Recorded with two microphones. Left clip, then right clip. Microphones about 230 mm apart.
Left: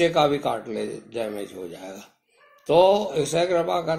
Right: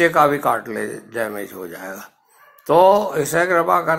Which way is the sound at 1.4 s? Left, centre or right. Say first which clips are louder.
Right 4 dB; centre.